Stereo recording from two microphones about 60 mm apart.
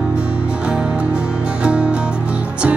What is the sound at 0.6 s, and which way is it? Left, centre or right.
Music, centre.